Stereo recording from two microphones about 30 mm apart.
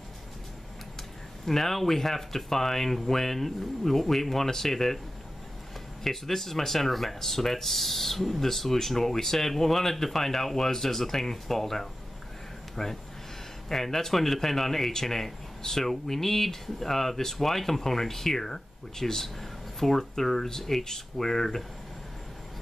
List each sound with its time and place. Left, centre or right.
1.4 s speech: centre
6.0 s speech: centre
12.8 s speech: left
13.7 s speech: centre